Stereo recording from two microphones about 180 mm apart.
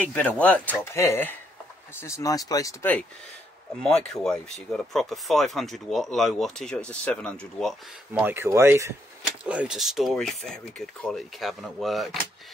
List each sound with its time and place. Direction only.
0.0 s speech: 10° left (ahead or behind)
8.1 s speech: 10° right (ahead or behind)